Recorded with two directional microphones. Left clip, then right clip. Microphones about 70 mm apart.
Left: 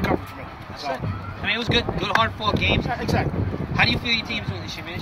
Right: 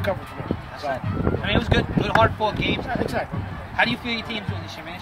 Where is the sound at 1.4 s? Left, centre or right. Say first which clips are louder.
Left 3 dB; right.